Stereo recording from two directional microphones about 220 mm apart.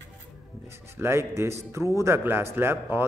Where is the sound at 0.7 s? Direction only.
10° right (ahead or behind).